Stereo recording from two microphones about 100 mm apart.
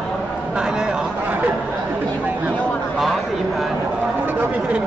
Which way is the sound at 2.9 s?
Centre (ahead or behind).